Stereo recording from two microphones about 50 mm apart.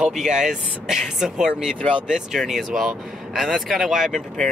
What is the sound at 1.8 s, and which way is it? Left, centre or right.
Speech, left.